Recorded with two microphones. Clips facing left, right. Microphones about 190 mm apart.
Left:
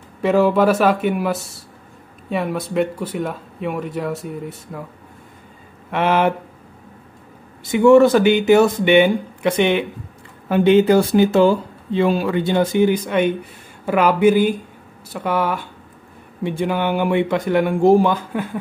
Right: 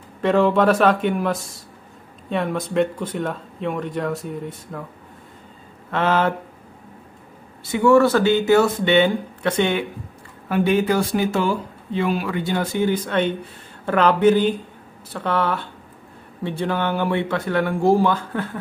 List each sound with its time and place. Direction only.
0.2 s speech: 5° left (ahead or behind)
5.9 s speech: 15° left (ahead or behind)
7.7 s speech: 20° left (ahead or behind)